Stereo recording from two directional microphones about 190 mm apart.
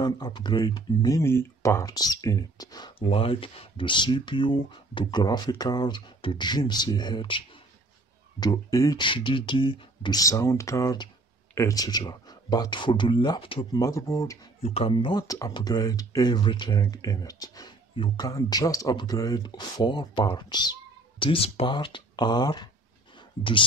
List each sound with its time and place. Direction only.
0.0 s speech: 20° left (ahead or behind)
14.6 s speech: 30° left (ahead or behind)
23.1 s a sound: 25° left (ahead or behind)